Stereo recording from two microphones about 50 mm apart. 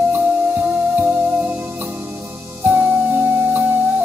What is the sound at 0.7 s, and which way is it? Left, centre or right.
Music, right.